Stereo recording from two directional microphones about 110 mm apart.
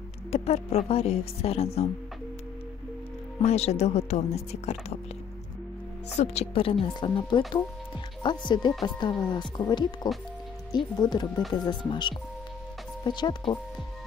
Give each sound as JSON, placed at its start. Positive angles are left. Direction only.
{"t": 0.3, "sound": "speech", "side_deg": 65}
{"t": 3.4, "sound": "speech", "side_deg": 75}
{"t": 6.1, "sound": "speech", "side_deg": 75}
{"t": 6.9, "sound": "a woman's voice", "side_deg": 45}
{"t": 11.0, "sound": "a woman's voice", "side_deg": 40}